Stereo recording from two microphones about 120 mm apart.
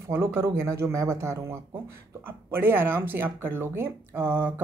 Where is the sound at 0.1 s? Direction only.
20° right (ahead or behind).